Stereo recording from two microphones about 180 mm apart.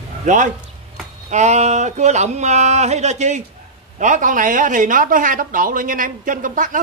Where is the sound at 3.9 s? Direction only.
45° right (ahead or behind).